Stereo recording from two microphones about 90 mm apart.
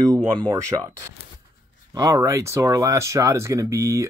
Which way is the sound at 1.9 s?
40° right (ahead or behind).